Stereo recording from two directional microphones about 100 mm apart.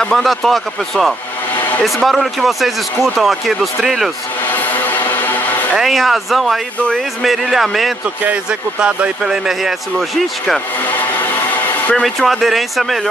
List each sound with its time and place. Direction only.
0.0 s speech: centre (ahead or behind)
4.6 s a sound: 20° left (ahead or behind)
5.8 s speech: centre (ahead or behind)
11.9 s speech: centre (ahead or behind)